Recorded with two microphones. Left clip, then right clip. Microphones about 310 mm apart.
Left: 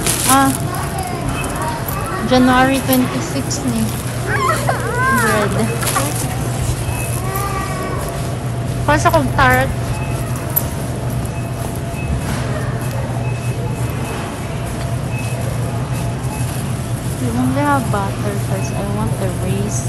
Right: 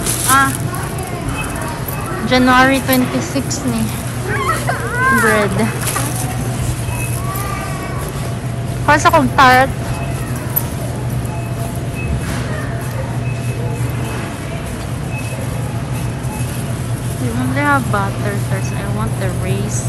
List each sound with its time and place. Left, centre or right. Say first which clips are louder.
2.2 s a woman's voice: right 2 dB; centre
4.3 s dog: left 1 dB; left
5.2 s a woman's voice: right 2 dB; centre
8.8 s a woman's voice: right 3 dB; centre
17.6 s a woman's voice: right 3 dB; centre